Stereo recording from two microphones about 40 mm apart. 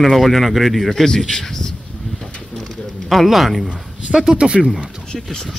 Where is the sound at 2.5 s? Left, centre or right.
Centre.